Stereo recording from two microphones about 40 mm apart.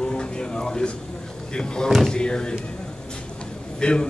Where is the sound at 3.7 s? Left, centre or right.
Left.